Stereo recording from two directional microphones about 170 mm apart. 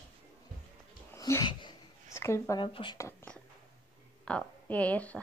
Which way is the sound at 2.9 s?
15° left (ahead or behind).